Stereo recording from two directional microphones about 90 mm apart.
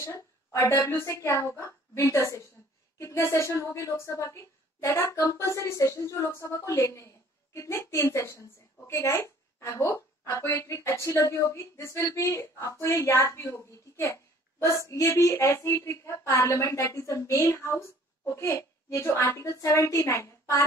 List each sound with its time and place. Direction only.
0.0 s a woman's voice: 35° left (ahead or behind)